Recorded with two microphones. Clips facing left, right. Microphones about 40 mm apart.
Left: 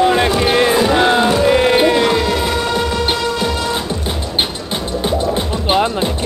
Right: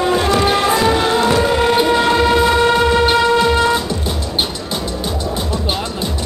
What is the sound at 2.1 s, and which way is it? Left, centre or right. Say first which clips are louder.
Music: right 4 dB; centre.